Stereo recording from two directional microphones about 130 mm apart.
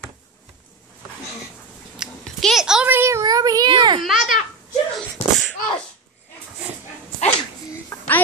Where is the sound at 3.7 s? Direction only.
35° right (ahead or behind).